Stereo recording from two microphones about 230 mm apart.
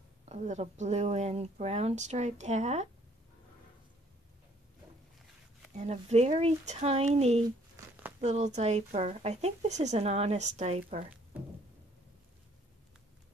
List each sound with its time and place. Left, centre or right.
0.2 s speech: right
5.8 s speech: right